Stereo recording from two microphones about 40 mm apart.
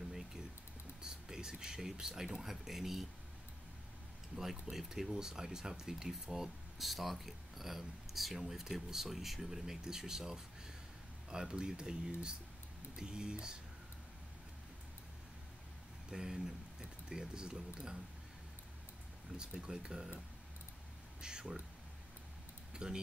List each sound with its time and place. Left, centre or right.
0.1 s a sound: centre
1.0 s speech: centre
4.4 s speech: centre
6.8 s speech: centre
16.1 s speech: centre
19.3 s speech: right
21.2 s speech: centre
22.7 s a sound: centre